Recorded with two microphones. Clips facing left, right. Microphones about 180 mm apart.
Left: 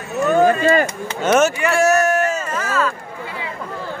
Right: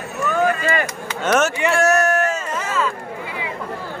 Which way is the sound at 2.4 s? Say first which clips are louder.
Left 2 dB; 20° right (ahead or behind).